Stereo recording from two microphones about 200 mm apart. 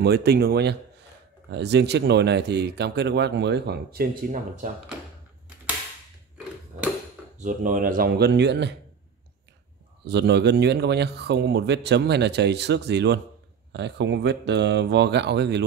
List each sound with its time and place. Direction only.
0.0 s speech: 55° right (ahead or behind)
7.3 s speech: 40° right (ahead or behind); by 8.7 s 60° right (ahead or behind)
10.0 s speech: 55° right (ahead or behind)